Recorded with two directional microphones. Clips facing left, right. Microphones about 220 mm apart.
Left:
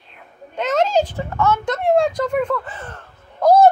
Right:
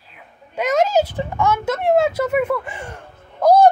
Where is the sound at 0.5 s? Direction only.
10° right (ahead or behind).